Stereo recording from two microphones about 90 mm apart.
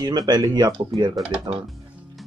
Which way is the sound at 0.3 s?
50° right (ahead or behind).